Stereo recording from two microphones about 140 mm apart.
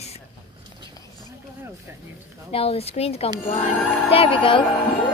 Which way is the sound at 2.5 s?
45° left (ahead or behind).